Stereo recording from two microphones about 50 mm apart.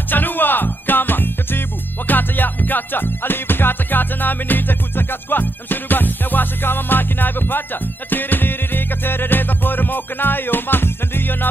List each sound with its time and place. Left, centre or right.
0.1 s music: left